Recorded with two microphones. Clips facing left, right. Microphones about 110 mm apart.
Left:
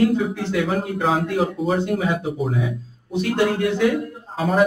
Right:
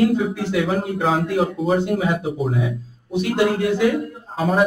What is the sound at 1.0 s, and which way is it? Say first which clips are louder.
A man's voice: right 1 dB; centre (ahead or behind).